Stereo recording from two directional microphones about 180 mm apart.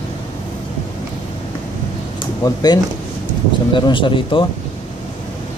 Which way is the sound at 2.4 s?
20° left (ahead or behind).